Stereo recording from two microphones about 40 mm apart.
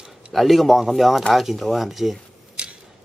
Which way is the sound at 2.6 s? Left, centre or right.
Right.